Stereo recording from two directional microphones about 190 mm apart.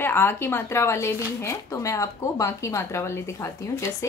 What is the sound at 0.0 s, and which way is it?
Speech, 10° left (ahead or behind).